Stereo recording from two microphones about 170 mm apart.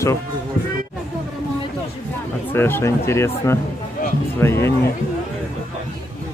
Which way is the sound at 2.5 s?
15° left (ahead or behind).